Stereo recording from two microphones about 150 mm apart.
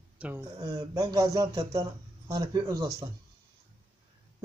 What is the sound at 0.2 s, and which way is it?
Speech, 10° right (ahead or behind).